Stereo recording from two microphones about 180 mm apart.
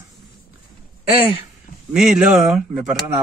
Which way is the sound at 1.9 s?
5° right (ahead or behind).